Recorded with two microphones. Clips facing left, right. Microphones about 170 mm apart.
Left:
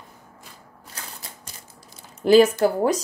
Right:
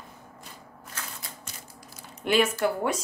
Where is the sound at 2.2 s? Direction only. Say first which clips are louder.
Left 9 dB; 35° left (ahead or behind).